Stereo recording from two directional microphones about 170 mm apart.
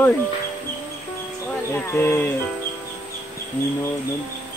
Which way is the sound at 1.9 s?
15° left (ahead or behind).